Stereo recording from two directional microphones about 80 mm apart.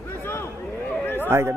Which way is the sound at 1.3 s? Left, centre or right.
Right.